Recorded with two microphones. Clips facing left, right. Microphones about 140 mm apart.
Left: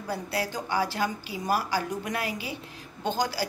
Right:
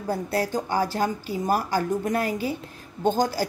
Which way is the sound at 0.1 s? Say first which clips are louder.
Right 6 dB; 45° right (ahead or behind).